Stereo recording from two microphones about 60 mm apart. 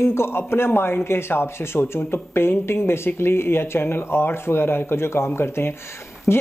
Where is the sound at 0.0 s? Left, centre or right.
Left.